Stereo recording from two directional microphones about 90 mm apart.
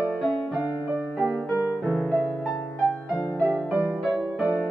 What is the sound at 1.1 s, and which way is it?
Music, centre (ahead or behind).